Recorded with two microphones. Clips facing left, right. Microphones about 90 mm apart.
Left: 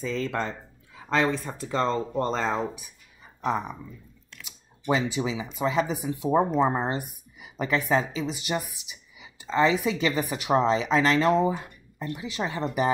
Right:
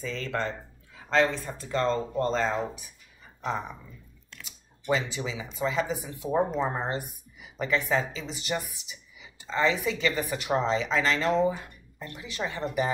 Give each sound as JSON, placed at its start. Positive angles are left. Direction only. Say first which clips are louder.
{"t": 0.0, "sound": "a woman's voice", "louder": "left 3 dB", "side_deg": 15}
{"t": 4.8, "sound": "a woman's voice", "louder": "left 3 dB", "side_deg": 15}